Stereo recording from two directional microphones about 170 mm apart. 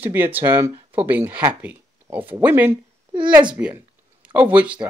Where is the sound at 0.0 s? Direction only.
10° right (ahead or behind).